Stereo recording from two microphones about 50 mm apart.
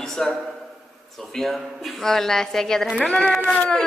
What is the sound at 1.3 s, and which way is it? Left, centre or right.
A woman's voice, centre.